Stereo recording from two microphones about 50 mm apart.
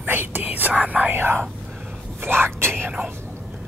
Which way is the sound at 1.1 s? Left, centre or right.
Right.